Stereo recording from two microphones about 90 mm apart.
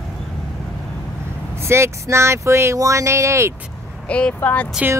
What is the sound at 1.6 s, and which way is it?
Speech, 30° right (ahead or behind).